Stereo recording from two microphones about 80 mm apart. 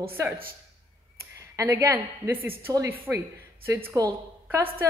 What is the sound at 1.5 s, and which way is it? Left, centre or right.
Speech, right.